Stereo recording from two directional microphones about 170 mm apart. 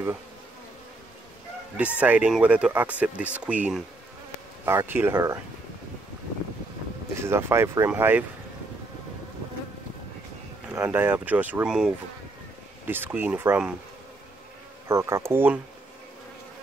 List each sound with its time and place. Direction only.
1.8 s speech: 10° right (ahead or behind)
7.2 s speech: 15° right (ahead or behind)
10.7 s speech: 15° right (ahead or behind)
14.9 s speech: 15° right (ahead or behind)